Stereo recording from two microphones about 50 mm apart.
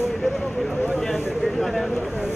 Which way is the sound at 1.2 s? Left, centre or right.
Centre.